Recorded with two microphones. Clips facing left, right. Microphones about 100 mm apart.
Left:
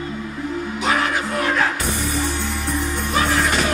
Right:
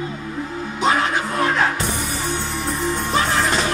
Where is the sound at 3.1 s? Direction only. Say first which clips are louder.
Left 1 dB; 30° right (ahead or behind).